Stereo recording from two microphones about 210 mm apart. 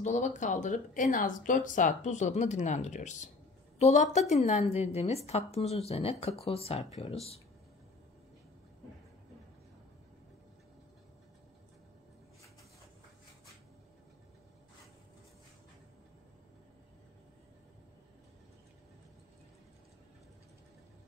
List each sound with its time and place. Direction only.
0.0 s a woman's voice: 35° left (ahead or behind)